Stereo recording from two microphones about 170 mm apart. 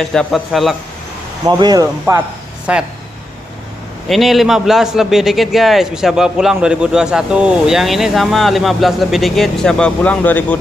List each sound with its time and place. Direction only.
0.0 s a man's voice: 5° left (ahead or behind)
1.4 s speech: 20° right (ahead or behind)
4.1 s a man's voice: centre (ahead or behind)